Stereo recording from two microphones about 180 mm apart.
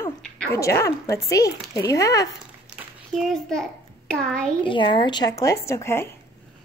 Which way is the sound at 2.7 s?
Centre (ahead or behind).